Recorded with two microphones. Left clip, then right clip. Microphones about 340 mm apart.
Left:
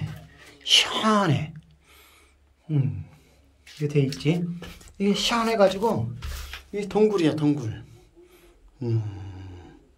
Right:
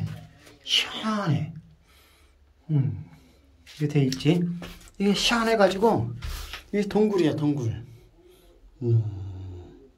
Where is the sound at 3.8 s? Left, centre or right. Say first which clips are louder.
Even; centre.